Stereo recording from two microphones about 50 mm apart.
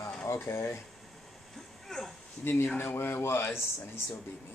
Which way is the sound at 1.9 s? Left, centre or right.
Centre.